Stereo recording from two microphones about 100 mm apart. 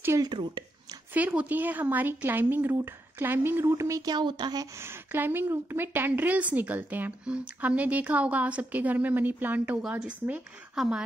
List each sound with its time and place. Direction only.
0.2 s speech: 50° right (ahead or behind)
1.1 s speech: 15° right (ahead or behind); by 4.6 s 45° right (ahead or behind)
4.7 s a woman's voice: 25° right (ahead or behind)
9.8 s a woman's voice: 5° right (ahead or behind)